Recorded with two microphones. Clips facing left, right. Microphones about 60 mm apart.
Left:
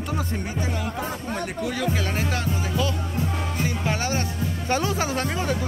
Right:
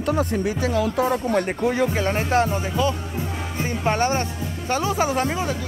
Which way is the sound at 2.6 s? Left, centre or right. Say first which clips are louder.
Right 3 dB; centre.